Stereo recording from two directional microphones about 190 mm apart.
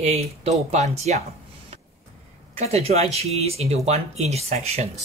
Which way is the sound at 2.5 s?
35° right (ahead or behind).